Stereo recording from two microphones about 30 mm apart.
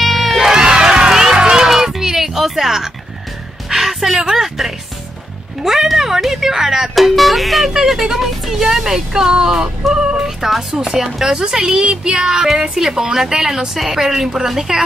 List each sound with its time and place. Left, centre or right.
0.0 s crowd: centre
0.5 s run: right
1.9 s music: centre
5.6 s a sound: centre
7.0 s speech: centre
7.7 s speech: centre; by 11.0 s right
11.0 s speech: centre